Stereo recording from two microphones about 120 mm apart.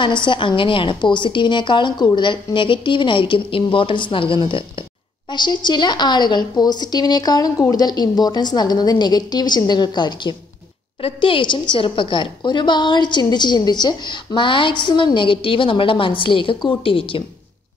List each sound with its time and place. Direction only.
0.0 s a woman's voice: 40° left (ahead or behind)
11.0 s a woman's voice: 50° left (ahead or behind)